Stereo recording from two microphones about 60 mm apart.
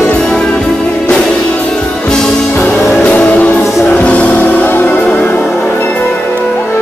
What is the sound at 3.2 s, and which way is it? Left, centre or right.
Music, left.